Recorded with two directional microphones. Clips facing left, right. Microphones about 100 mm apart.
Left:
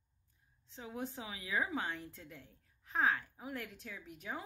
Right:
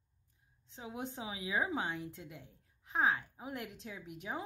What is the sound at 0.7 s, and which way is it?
A woman's voice, 20° right (ahead or behind).